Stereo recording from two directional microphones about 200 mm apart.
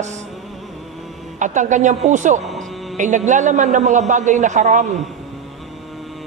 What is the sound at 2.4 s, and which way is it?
Music, centre (ahead or behind).